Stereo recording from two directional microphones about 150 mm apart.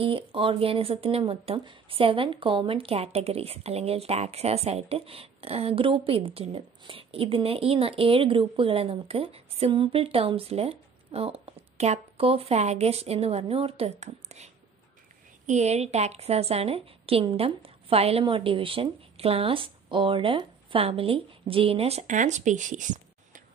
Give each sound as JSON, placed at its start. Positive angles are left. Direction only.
{"t": 0.0, "sound": "a woman's voice", "side_deg": -35}